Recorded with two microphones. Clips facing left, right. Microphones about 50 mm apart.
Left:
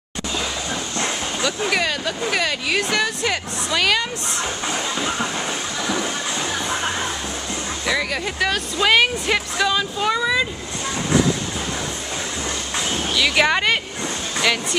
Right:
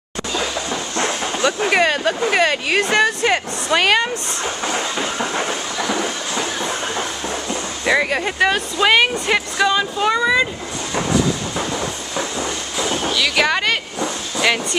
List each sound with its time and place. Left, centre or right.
0.4 s speech: right
5.2 s a sound: right
7.8 s speech: right; by 10.4 s centre
13.1 s speech: centre